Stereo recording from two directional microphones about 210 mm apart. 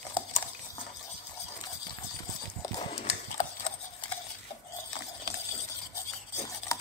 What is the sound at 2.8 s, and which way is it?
Horse, 30° left (ahead or behind).